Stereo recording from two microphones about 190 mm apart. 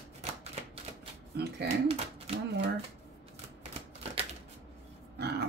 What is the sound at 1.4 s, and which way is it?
Speech, 60° right (ahead or behind).